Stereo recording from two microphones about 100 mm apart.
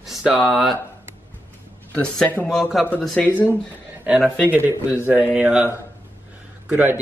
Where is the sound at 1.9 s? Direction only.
15° left (ahead or behind).